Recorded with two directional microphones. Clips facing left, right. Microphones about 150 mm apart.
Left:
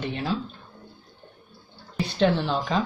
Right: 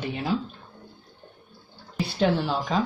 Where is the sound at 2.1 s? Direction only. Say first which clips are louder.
Left 1 dB; 10° right (ahead or behind).